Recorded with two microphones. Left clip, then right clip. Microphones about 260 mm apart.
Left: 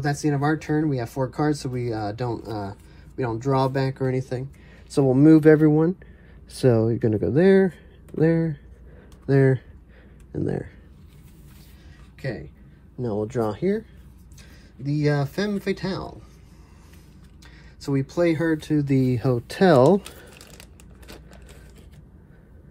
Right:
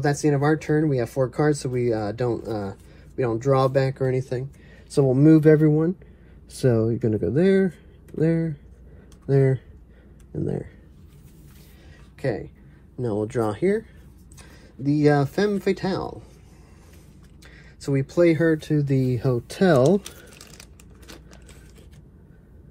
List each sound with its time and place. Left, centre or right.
0.0 s speech: centre; by 10.7 s left
12.2 s speech: centre
13.6 s speech: right
14.8 s speech: centre
17.7 s speech: centre